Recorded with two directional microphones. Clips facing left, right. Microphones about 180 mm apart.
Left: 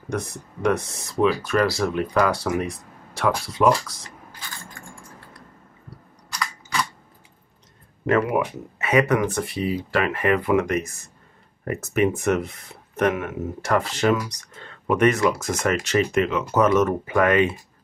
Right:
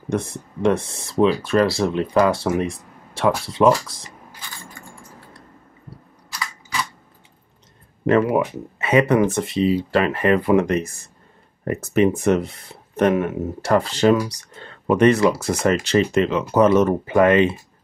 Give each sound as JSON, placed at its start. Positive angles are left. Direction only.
{"t": 0.1, "sound": "speech", "side_deg": -25}
{"t": 6.3, "sound": "a sound", "side_deg": 0}
{"t": 8.1, "sound": "speech", "side_deg": -30}